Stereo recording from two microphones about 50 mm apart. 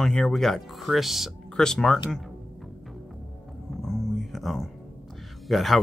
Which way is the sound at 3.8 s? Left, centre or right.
Centre.